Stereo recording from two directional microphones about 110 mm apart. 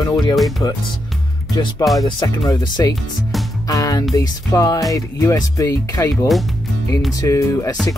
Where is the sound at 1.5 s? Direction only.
40° left (ahead or behind).